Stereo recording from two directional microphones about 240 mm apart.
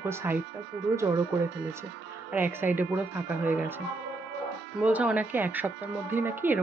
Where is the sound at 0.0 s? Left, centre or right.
Centre.